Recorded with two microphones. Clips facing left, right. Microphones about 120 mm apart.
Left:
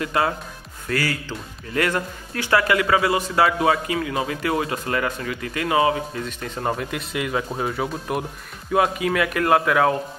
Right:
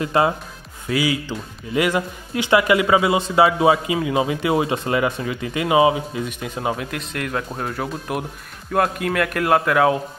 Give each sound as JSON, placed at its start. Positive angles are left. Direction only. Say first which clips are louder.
{"t": 0.0, "sound": "speech", "louder": "right 4 dB", "side_deg": -25}
{"t": 0.8, "sound": "speech", "louder": "right 4 dB", "side_deg": -10}